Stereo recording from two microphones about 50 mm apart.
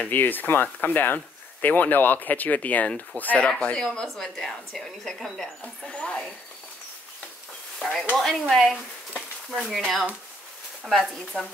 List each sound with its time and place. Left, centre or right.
0.1 s speech: left
3.4 s speech: left
3.8 s a woman's voice: centre
8.1 s a woman's voice: centre